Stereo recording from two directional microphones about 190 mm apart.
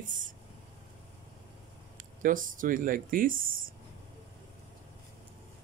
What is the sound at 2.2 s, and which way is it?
Speech, 45° right (ahead or behind).